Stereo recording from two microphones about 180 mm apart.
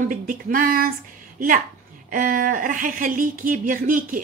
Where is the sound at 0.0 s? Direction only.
50° right (ahead or behind).